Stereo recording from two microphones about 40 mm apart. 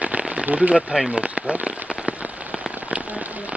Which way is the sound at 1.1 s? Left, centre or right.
Right.